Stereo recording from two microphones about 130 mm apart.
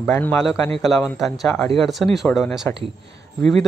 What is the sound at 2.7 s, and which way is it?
Speech, 20° left (ahead or behind).